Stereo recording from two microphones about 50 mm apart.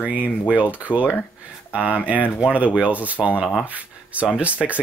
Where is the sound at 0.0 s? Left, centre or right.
Right.